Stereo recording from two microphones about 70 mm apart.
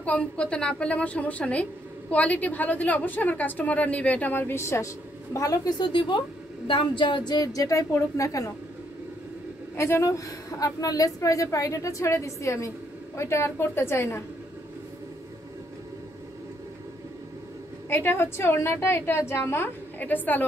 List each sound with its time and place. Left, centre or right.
0.0 s a woman's voice: centre; by 4.9 s left
5.3 s a sound: left
7.2 s a sound: left
7.9 s a woman's voice: left
9.8 s a woman's voice: left
17.8 s a woman's voice: left